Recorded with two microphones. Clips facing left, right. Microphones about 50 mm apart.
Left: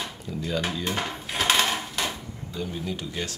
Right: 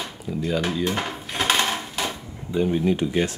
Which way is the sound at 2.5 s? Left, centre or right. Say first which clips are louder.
Right 11 dB; right.